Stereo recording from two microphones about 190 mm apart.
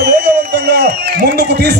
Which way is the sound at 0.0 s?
55° right (ahead or behind).